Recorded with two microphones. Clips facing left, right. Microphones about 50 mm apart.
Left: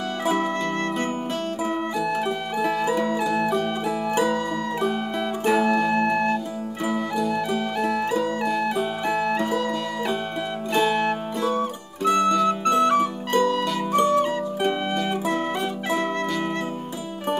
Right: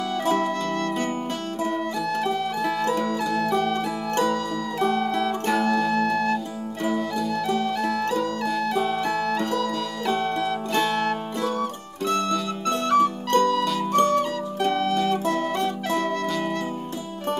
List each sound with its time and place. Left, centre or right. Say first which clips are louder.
0.2 s music: even; centre
0.5 s music: even; left
1.6 s music: right 1 dB; centre